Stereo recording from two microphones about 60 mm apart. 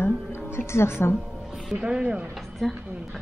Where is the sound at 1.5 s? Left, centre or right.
Centre.